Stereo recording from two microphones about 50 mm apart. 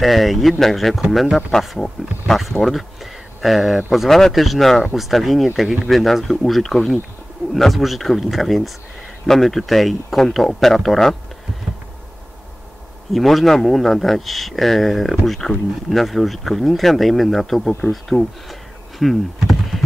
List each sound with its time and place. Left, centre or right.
0.0 s speech: centre
13.1 s speech: centre
18.1 s speech: centre
18.5 s a sound: centre